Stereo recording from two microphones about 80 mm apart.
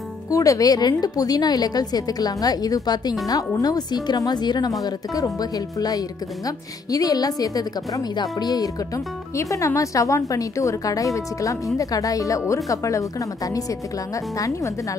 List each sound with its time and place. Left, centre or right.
0.3 s a woman's voice: left
9.3 s speech: left